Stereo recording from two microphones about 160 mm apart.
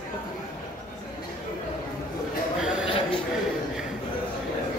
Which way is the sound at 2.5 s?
5° right (ahead or behind).